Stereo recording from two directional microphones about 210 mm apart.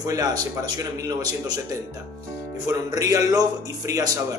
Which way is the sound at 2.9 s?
15° right (ahead or behind).